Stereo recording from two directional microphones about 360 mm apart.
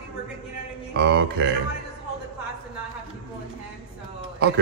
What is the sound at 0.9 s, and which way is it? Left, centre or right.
Speech, right.